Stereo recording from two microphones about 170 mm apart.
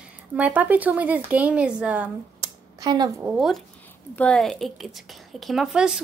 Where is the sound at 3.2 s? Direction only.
Centre (ahead or behind).